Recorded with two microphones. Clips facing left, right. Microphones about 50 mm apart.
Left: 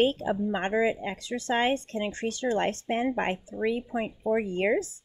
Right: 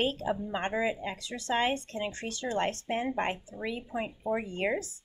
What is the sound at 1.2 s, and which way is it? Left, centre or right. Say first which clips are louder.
Speech: left 2 dB; left.